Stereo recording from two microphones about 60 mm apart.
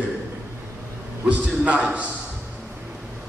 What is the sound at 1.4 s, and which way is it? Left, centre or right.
Speech, right.